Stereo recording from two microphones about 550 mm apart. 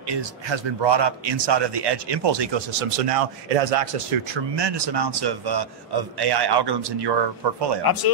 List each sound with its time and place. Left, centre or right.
0.1 s a man's voice: right
7.8 s speech: left